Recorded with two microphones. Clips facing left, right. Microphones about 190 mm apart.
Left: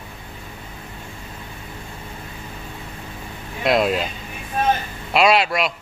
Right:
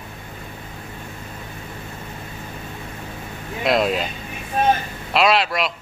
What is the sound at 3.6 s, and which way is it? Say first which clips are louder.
Speech: left 1 dB; centre (ahead or behind).